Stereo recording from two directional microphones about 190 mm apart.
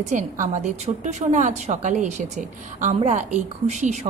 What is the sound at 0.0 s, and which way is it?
A woman's voice, 40° right (ahead or behind).